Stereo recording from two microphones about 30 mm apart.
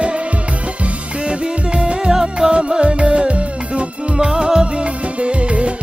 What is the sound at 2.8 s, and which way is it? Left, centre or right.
Music, right.